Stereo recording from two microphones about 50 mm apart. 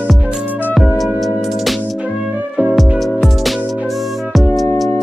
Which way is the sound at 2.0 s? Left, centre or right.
Right.